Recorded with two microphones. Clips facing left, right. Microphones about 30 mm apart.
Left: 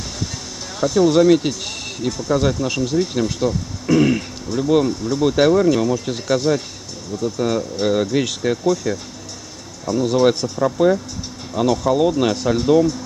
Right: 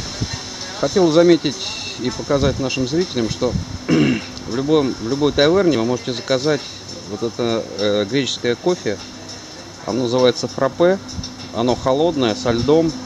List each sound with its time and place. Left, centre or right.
0.7 s speech: centre